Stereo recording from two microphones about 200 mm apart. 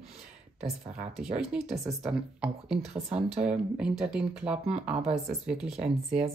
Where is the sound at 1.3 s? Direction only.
Centre (ahead or behind).